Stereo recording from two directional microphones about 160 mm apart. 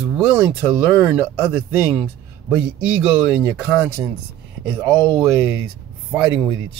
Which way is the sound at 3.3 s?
15° right (ahead or behind).